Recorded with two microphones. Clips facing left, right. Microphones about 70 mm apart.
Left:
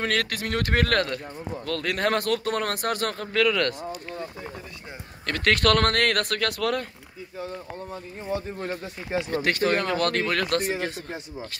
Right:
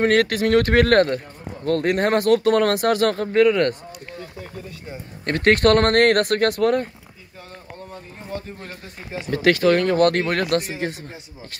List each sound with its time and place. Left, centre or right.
0.0 s speech: right
2.7 s speech: right
3.3 s speech: right
5.2 s speech: right
8.5 s speech: left
9.3 s speech: right